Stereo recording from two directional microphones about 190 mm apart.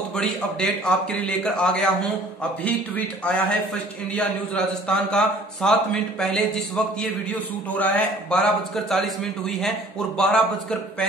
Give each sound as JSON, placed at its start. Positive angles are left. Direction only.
{"t": 0.1, "sound": "a man's voice", "side_deg": 5}
{"t": 3.3, "sound": "a man's voice", "side_deg": 5}